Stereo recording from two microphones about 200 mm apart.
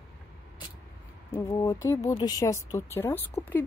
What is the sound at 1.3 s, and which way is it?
Speech, 15° left (ahead or behind).